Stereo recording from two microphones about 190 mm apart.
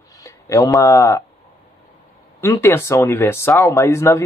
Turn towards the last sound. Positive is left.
turn(degrees=15)  # may be behind; listen again after turning